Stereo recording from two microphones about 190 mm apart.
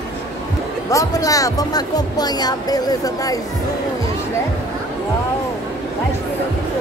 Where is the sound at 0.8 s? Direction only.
15° left (ahead or behind).